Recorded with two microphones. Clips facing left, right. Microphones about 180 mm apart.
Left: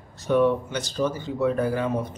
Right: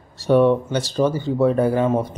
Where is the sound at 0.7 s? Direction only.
30° right (ahead or behind).